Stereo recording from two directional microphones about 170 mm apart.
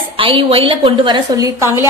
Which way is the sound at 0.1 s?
30° right (ahead or behind).